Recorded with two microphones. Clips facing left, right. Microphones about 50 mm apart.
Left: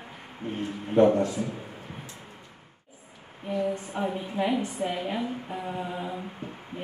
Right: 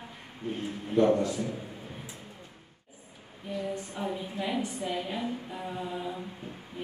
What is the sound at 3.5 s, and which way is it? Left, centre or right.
Speech, left.